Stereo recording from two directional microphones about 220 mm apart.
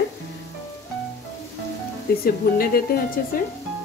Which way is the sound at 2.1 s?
45° left (ahead or behind).